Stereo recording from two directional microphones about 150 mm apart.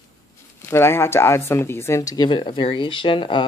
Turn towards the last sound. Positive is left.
turn(degrees=35)  # may be behind; listen again after turning